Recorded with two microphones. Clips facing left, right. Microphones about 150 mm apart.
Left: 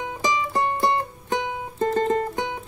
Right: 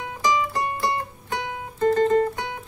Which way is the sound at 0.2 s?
20° left (ahead or behind).